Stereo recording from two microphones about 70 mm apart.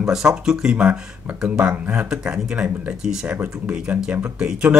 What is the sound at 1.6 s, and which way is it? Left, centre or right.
Speech, right.